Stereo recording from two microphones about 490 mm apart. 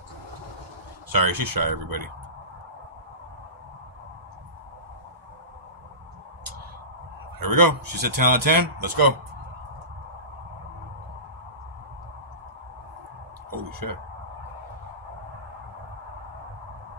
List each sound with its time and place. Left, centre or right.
1.1 s speech: right
7.3 s speech: right
13.5 s a sound: right